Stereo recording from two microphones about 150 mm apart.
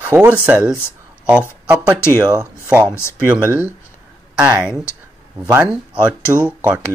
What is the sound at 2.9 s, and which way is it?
Speech, 20° left (ahead or behind).